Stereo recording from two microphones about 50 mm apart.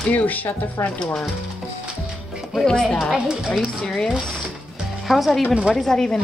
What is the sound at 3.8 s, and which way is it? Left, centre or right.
Speech, centre.